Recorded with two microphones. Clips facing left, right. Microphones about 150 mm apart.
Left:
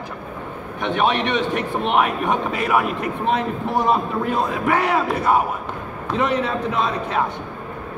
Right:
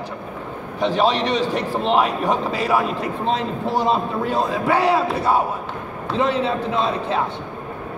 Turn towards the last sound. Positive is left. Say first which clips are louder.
# right 1 dB
turn(degrees=-30)  # may be behind; listen again after turning